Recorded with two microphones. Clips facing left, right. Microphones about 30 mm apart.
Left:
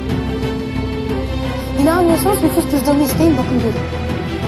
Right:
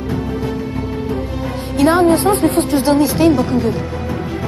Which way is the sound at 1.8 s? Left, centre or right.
Right.